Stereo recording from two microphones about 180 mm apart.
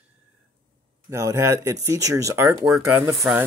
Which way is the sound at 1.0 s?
15° right (ahead or behind).